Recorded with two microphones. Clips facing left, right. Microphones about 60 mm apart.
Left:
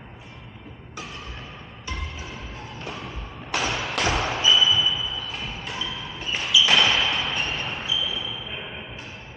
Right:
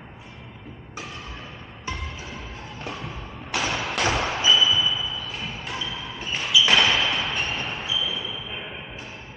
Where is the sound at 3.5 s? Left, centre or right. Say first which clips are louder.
Even; centre.